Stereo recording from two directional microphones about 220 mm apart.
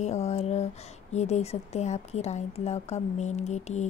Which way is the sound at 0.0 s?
30° left (ahead or behind).